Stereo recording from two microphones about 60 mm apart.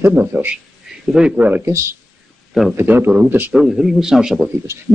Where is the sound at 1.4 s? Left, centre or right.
Right.